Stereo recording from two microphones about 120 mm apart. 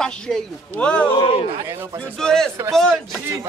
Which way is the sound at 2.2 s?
5° left (ahead or behind).